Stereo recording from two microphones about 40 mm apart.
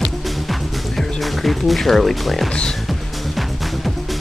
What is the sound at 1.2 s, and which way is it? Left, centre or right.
Speech, centre.